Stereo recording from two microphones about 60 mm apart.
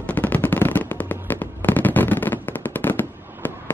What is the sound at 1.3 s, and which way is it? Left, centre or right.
Fireworks, left.